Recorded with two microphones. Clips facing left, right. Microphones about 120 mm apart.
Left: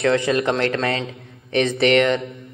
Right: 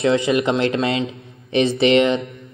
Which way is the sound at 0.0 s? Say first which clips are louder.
Right 1 dB; 20° right (ahead or behind).